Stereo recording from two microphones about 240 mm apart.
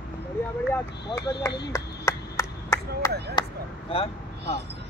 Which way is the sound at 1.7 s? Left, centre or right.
Centre.